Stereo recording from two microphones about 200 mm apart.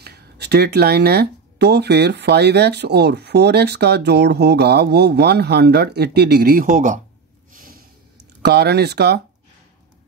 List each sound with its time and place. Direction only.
0.0 s speech: 55° right (ahead or behind)
7.5 s snort: 45° right (ahead or behind)
8.4 s speech: 55° right (ahead or behind)